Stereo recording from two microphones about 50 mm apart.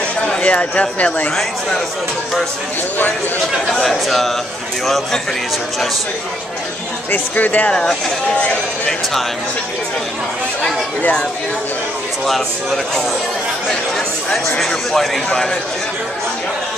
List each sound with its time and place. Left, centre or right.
0.4 s speech: left
3.7 s speech: centre
7.1 s speech: left
7.7 s speech: centre
8.4 s speech: left
12.3 s speech: centre
14.6 s speech: centre